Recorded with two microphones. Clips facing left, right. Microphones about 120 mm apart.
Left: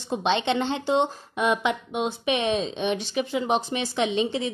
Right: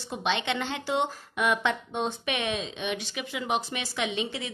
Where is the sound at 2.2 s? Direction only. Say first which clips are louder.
Left 6 dB; 25° left (ahead or behind).